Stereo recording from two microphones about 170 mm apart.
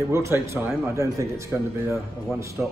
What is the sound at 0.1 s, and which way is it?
A man's voice, 15° right (ahead or behind).